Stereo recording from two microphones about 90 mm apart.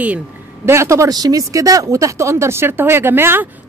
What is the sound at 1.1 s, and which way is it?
Speech, 45° right (ahead or behind).